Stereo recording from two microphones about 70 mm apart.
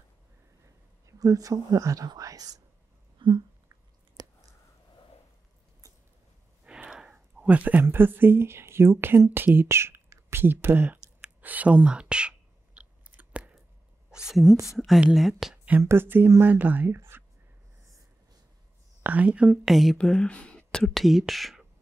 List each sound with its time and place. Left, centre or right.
1.0 s speech: right
4.2 s a sound: right
6.6 s speech: centre; by 11.0 s right
11.4 s a sound: right
13.1 s chewing: centre
14.1 s a woman's voice: centre
15.5 s a sound: centre
15.8 s speech: right
19.0 s speech: right
19.6 s speech: centre
20.0 s speech: centre
20.9 s speech: centre